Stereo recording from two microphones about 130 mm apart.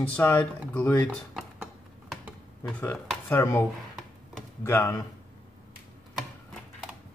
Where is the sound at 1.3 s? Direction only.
5° right (ahead or behind).